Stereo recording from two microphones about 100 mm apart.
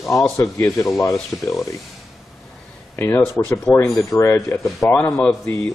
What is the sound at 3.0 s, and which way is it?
Speech, 20° left (ahead or behind).